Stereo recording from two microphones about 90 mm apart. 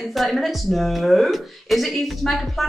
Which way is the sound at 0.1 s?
Centre (ahead or behind).